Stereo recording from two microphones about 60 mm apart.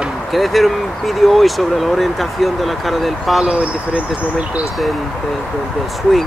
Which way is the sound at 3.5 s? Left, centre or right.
Right.